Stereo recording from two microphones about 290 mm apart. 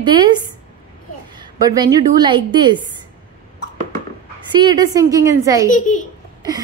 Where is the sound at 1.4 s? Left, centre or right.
Centre.